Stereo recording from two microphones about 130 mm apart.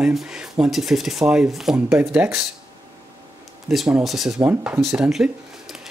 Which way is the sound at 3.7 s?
5° right (ahead or behind).